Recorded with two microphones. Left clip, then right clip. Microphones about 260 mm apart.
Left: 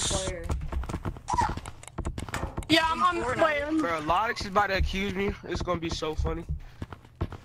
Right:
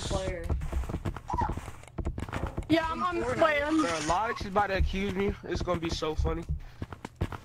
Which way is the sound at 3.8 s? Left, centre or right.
Left.